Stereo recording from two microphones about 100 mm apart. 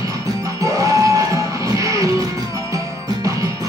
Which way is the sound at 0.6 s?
35° right (ahead or behind).